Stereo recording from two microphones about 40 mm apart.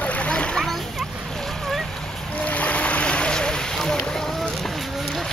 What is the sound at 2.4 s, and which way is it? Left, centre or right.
Boat, left.